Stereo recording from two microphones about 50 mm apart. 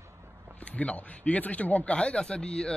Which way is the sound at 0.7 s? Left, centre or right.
Left.